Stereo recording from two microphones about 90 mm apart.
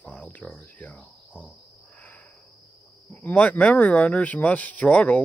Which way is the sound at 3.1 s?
20° left (ahead or behind).